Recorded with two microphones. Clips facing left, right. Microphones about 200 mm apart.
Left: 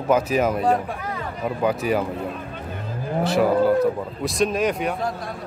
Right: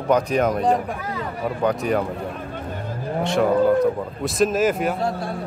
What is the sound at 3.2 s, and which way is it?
A man's voice, 5° left (ahead or behind).